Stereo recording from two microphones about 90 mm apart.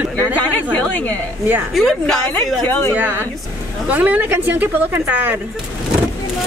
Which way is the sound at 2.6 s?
20° left (ahead or behind).